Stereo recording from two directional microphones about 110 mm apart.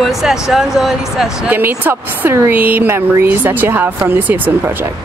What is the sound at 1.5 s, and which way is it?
Speech, 20° right (ahead or behind).